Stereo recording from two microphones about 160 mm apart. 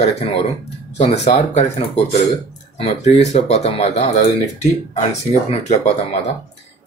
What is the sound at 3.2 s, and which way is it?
Speech, 45° left (ahead or behind).